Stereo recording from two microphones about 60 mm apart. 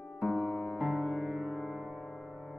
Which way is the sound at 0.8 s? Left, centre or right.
Centre.